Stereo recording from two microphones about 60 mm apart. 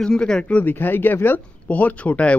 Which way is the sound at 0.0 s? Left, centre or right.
Centre.